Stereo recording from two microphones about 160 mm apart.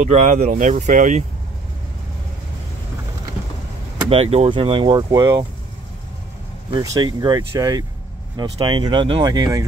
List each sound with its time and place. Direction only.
0.0 s speech: 50° right (ahead or behind)
4.1 s speech: 40° right (ahead or behind); by 5.5 s 25° right (ahead or behind)
6.7 s speech: 25° right (ahead or behind)